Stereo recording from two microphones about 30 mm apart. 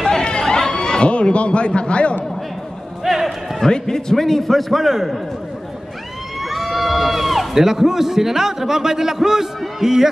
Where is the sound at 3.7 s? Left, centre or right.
Centre.